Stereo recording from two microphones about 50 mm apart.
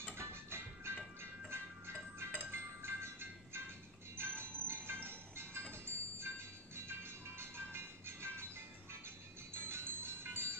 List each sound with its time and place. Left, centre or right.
0.1 s music: right
9.5 s music: right